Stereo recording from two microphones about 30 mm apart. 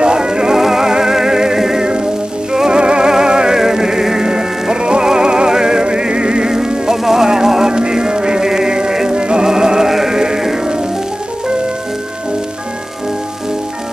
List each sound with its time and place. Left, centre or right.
0.0 s music: right
0.6 s music: centre
2.8 s music: right